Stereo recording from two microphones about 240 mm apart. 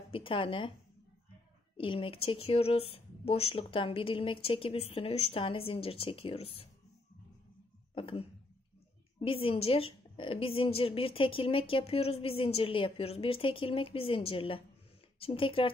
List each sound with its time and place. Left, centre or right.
0.1 s a woman's voice: left
1.8 s a woman's voice: left
7.9 s a sound: left
9.2 s a woman's voice: left